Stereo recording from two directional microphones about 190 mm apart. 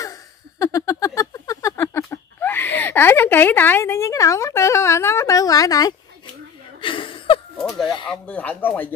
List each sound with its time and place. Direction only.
0.6 s a sound: 15° left (ahead or behind)
6.8 s chuckle: 25° left (ahead or behind)
7.5 s fowl: centre (ahead or behind)
8.1 s speech: 5° left (ahead or behind)